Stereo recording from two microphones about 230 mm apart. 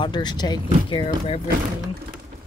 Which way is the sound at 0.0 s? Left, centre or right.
Centre.